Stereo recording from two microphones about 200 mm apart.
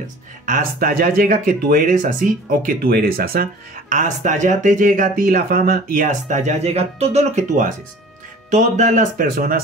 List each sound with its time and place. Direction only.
0.5 s speech: 45° right (ahead or behind)